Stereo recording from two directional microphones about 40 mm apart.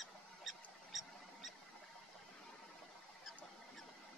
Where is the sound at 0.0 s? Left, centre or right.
Centre.